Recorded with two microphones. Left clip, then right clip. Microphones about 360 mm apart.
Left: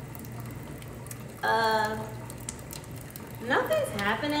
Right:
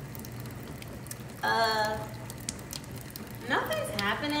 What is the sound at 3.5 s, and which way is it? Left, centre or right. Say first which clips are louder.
Speech: left 4 dB; centre.